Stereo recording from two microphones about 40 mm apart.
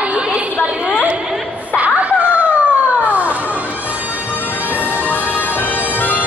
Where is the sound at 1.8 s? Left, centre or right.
Right.